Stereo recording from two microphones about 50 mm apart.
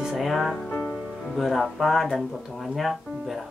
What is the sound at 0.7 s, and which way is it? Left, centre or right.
Music, left.